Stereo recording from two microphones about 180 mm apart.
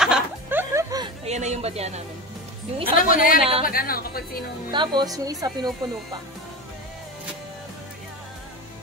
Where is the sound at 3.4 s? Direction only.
30° right (ahead or behind).